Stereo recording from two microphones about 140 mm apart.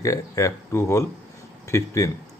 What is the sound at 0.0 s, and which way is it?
Speech, 25° left (ahead or behind).